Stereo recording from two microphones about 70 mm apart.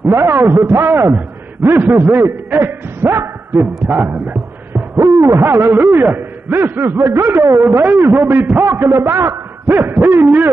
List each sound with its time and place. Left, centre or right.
0.0 s a man's voice: right
4.9 s a man's voice: right
7.4 s speech: right
7.8 s a man's voice: right